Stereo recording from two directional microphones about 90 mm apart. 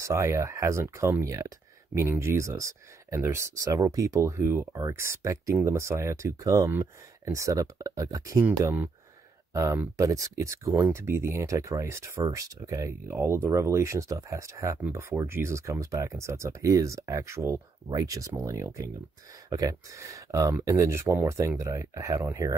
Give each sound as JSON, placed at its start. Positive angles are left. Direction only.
{"t": 0.0, "sound": "speech", "side_deg": -35}
{"t": 9.5, "sound": "speech", "side_deg": -35}
{"t": 13.1, "sound": "speech", "side_deg": -25}
{"t": 17.8, "sound": "speech", "side_deg": -45}